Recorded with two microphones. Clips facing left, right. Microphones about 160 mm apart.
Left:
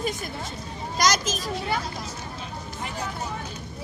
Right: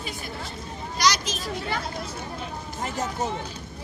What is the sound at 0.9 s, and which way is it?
Speech, 45° left (ahead or behind).